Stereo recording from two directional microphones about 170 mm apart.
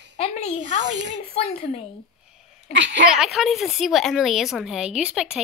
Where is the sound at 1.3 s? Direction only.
35° left (ahead or behind).